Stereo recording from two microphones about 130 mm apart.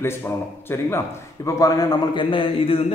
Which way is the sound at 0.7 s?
20° left (ahead or behind).